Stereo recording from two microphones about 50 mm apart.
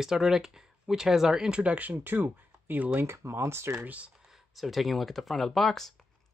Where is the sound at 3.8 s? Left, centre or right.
Right.